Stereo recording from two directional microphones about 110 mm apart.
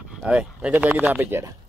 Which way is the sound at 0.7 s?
15° right (ahead or behind).